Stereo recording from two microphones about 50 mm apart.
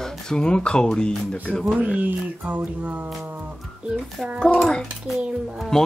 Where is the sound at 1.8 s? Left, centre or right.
Right.